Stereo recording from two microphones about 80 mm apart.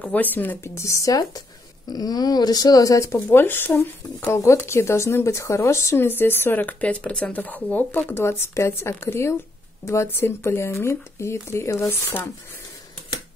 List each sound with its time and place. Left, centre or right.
0.0 s speech: left
0.7 s speech: left
3.3 s speech: left
8.2 s speech: left